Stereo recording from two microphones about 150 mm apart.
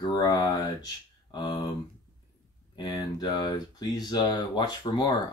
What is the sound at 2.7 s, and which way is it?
Speech, 30° left (ahead or behind).